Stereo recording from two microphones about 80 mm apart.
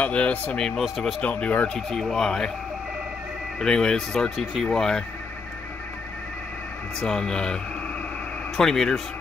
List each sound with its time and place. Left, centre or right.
0.0 s speech: centre
0.7 s speech: centre
1.2 s speech: centre
1.7 s speech: centre
3.5 s speech: centre
7.0 s speech: centre
8.5 s speech: centre